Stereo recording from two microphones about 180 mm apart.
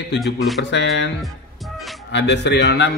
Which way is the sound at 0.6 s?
80° left.